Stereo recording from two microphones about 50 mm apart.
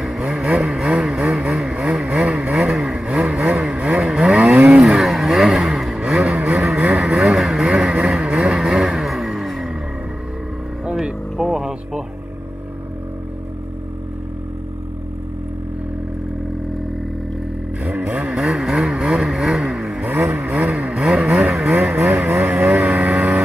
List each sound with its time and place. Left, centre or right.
0.5 s vehicle: centre
4.0 s vehicle: centre
4.4 s vehicle: right
4.7 s vehicle: centre
6.0 s vehicle: right
9.0 s music: centre
10.9 s vehicle: centre
18.0 s vehicle: centre
21.9 s vehicle: right